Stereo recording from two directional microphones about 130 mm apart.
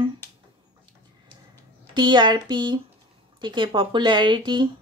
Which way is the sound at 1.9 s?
35° right (ahead or behind).